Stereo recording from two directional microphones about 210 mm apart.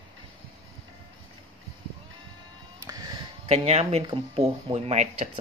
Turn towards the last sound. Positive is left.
turn(degrees=-30)  # may be behind; listen again after turning